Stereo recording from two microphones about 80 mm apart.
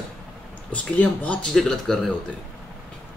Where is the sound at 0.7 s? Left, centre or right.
Centre.